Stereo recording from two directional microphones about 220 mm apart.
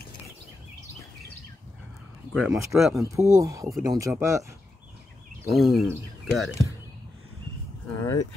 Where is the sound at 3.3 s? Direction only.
15° right (ahead or behind).